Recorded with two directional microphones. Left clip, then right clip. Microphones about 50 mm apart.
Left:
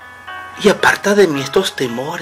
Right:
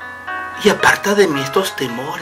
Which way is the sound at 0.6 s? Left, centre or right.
Left.